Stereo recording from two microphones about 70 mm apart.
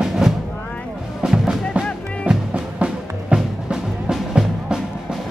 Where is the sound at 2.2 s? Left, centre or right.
Centre.